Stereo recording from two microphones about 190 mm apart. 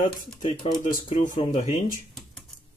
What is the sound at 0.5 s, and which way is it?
Speech, 30° left (ahead or behind).